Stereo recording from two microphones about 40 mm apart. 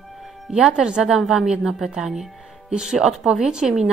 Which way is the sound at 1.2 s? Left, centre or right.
Centre.